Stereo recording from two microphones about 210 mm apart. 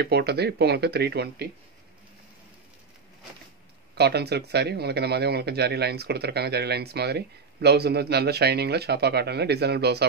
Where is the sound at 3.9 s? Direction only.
50° right (ahead or behind).